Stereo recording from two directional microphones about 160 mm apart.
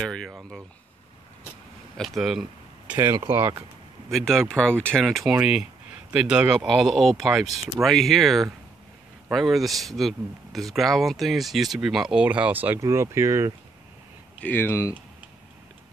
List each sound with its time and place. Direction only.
0.0 s speech: 5° left (ahead or behind)
2.0 s speech: centre (ahead or behind)
2.9 s speech: 15° right (ahead or behind)
4.1 s speech: 5° left (ahead or behind); by 13.5 s 15° right (ahead or behind)
14.4 s speech: 15° left (ahead or behind)